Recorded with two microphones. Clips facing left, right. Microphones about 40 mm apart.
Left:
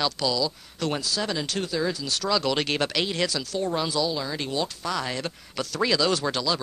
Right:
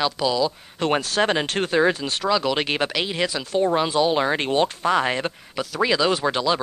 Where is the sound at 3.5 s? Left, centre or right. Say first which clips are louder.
Right 7 dB; right.